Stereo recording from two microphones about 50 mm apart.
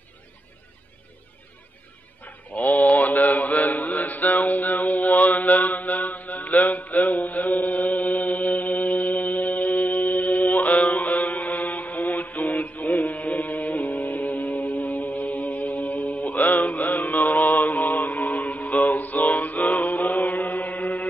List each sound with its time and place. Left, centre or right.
2.2 s mantra: left